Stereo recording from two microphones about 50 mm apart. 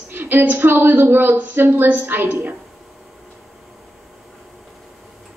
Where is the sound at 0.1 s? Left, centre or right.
Right.